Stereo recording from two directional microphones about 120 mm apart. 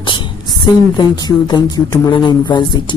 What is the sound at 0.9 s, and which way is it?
Speech, 35° left (ahead or behind).